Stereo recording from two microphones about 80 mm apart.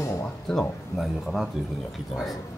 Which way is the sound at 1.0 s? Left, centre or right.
Centre.